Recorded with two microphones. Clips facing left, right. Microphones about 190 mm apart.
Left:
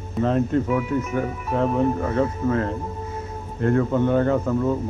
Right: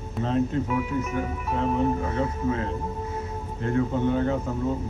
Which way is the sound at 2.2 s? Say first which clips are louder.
Left 5 dB; 55° left (ahead or behind).